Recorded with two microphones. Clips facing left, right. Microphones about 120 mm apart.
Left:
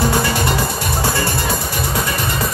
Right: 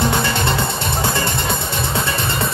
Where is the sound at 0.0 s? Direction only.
25° right (ahead or behind).